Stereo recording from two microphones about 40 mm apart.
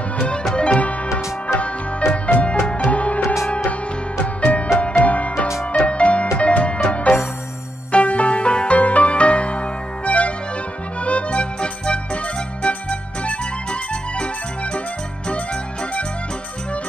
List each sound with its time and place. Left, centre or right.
0.2 s music: left
2.8 s music: left
4.4 s music: left